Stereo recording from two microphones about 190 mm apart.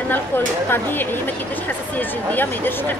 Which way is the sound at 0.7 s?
10° left (ahead or behind).